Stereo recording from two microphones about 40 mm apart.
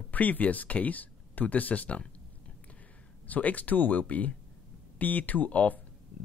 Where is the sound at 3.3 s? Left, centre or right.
Left.